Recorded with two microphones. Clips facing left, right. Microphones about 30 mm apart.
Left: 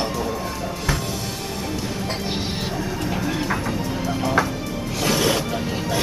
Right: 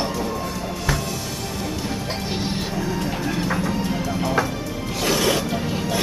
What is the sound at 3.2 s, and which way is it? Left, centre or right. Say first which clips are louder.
Vehicle: right 1 dB; centre.